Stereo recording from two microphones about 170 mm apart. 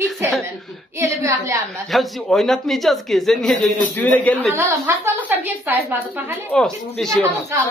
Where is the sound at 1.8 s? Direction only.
Centre (ahead or behind).